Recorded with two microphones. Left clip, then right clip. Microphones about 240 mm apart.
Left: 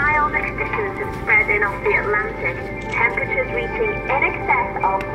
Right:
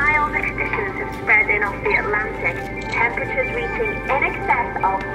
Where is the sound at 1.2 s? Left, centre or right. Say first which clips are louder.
Even; right.